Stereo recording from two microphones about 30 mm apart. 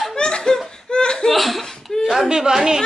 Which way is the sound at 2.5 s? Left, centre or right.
Centre.